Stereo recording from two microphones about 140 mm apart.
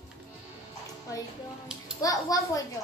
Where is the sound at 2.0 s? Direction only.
25° left (ahead or behind).